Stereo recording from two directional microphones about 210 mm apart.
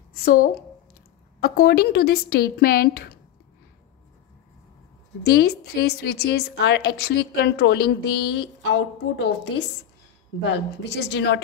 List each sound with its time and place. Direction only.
0.2 s a woman's voice: 45° left (ahead or behind)
5.2 s a woman's voice: 50° left (ahead or behind)